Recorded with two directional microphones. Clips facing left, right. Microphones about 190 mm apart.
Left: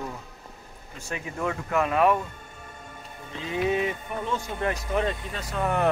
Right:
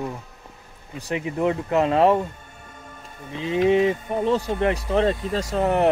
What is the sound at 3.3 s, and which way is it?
Speech, 20° right (ahead or behind).